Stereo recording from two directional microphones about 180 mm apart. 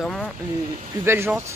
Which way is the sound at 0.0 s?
Centre (ahead or behind).